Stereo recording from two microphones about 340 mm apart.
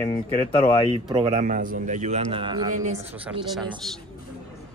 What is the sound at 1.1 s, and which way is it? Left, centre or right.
A man's voice, centre.